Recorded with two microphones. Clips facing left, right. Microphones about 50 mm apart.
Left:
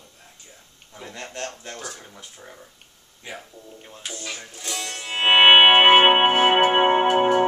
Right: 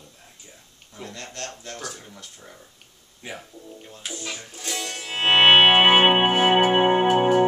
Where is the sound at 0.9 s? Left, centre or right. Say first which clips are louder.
Left 1 dB; left.